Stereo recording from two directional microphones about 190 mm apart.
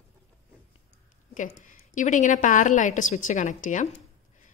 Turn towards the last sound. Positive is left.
turn(degrees=40)  # may be behind; listen again after turning